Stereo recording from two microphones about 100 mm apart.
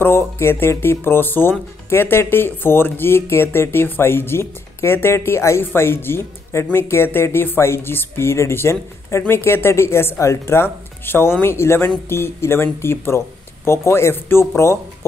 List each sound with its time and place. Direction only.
0.0 s speech: 25° left (ahead or behind)